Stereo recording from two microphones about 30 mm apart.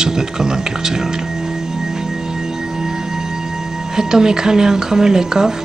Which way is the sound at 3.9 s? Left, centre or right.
Centre.